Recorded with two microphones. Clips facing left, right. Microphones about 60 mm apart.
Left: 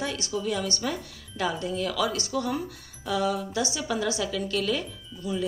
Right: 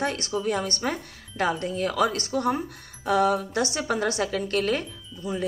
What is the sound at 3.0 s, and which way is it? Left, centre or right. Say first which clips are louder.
A woman's voice: right 5 dB; right.